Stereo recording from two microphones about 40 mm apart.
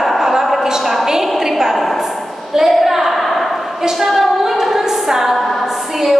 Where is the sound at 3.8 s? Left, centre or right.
Centre.